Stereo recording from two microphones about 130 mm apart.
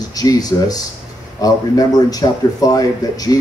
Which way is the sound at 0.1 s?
30° left (ahead or behind).